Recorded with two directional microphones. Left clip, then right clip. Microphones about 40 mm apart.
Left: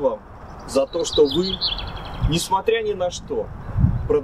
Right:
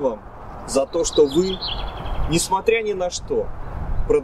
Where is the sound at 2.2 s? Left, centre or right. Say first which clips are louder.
Right 1 dB; right.